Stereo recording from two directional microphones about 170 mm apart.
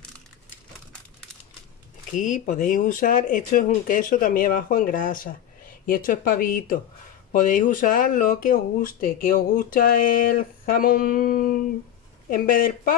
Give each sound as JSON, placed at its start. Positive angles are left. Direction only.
{"t": 2.1, "sound": "speech", "side_deg": 50}